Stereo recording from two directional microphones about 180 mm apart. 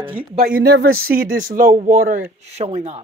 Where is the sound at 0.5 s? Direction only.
60° right (ahead or behind).